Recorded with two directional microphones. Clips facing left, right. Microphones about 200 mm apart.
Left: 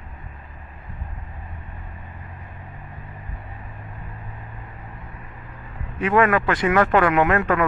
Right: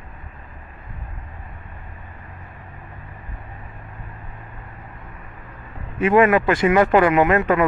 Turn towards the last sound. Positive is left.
turn(degrees=-5)  # may be behind; listen again after turning